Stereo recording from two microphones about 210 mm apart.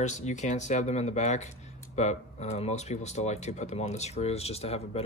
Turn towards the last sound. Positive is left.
turn(degrees=30)  # may be behind; listen again after turning